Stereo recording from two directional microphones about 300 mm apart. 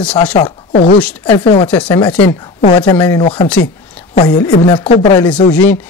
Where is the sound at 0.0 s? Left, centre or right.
Centre.